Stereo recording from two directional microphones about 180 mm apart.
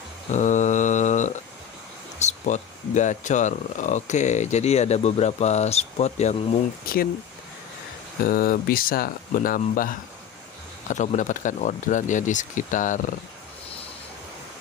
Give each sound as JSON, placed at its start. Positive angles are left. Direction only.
{"t": 0.3, "sound": "mantra", "side_deg": 45}
{"t": 2.1, "sound": "speech", "side_deg": 40}
{"t": 8.2, "sound": "speech", "side_deg": 55}